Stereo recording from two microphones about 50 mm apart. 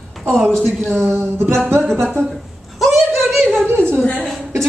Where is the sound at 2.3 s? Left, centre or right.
Centre.